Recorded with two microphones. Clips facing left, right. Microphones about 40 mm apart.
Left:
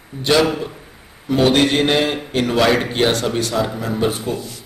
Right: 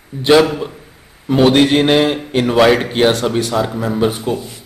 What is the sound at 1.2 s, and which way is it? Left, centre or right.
A man's voice, centre.